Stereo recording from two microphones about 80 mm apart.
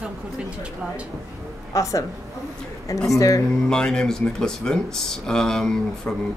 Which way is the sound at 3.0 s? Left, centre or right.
Left.